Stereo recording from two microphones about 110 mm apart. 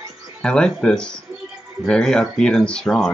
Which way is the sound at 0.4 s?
10° left (ahead or behind).